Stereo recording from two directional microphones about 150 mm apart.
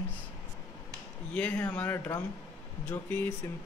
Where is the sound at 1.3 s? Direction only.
10° left (ahead or behind).